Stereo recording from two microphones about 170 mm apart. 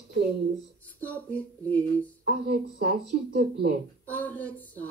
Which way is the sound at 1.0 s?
10° left (ahead or behind).